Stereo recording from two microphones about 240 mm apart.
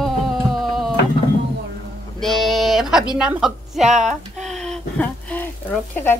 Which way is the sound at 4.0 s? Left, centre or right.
Right.